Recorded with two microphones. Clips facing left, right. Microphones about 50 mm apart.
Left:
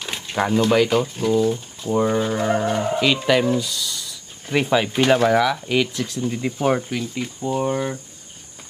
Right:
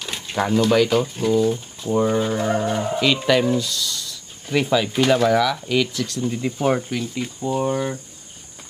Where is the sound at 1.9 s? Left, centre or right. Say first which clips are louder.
Even; centre.